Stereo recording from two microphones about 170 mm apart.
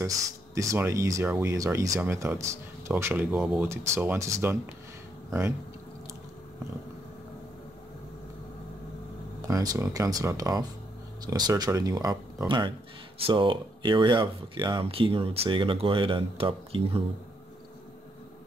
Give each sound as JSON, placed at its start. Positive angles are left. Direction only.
{"t": 0.6, "sound": "speech", "side_deg": -15}
{"t": 9.5, "sound": "speech", "side_deg": -20}